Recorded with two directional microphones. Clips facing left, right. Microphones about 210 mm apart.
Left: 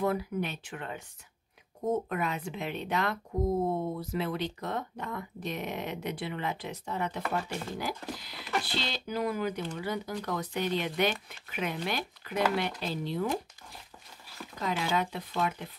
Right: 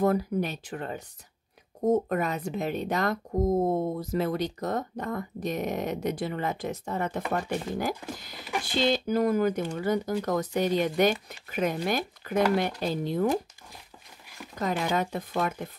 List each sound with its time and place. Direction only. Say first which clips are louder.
0.0 s speech: right 5 dB; 40° right (ahead or behind)
14.6 s speech: right 3 dB; 45° right (ahead or behind)